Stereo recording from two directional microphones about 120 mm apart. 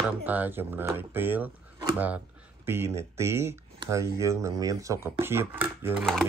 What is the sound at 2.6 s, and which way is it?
Speech, 20° right (ahead or behind).